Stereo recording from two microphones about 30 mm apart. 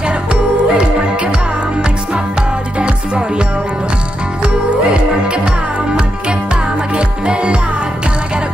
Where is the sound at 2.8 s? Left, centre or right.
Right.